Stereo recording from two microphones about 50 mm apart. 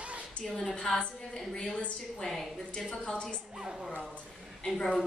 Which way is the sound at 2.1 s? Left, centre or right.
Centre.